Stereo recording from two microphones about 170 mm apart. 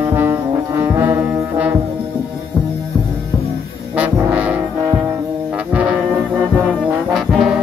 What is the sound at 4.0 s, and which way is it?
Brass instrument, 10° right (ahead or behind).